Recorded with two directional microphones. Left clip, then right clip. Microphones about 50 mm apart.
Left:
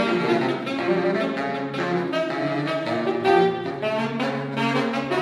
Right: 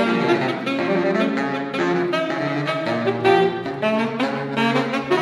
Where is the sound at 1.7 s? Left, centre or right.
Left.